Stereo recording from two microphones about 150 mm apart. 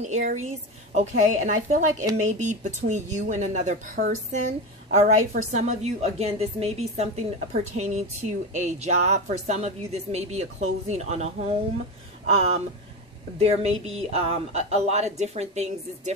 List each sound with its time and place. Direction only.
0.0 s a woman's voice: 50° right (ahead or behind)
13.4 s a woman's voice: 45° right (ahead or behind)